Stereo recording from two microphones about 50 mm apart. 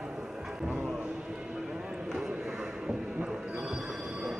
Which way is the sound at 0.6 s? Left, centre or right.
Centre.